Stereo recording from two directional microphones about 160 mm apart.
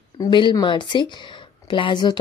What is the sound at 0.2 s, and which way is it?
Speech, 30° left (ahead or behind).